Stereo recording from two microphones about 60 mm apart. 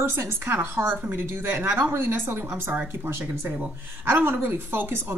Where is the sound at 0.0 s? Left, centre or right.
Right.